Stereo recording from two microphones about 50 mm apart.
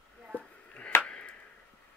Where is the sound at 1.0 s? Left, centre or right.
Left.